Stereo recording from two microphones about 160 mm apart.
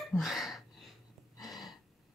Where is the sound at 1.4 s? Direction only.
Centre (ahead or behind).